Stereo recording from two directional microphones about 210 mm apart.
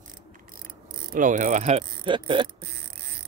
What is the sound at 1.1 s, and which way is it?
Speech, 40° right (ahead or behind).